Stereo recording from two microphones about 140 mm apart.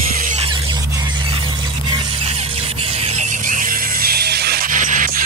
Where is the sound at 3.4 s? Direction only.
80° right.